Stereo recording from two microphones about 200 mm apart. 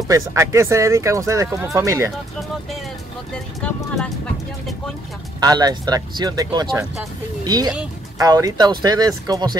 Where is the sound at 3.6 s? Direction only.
5° left (ahead or behind).